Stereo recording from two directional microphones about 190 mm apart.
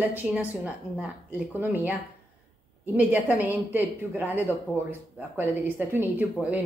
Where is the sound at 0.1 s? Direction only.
10° right (ahead or behind).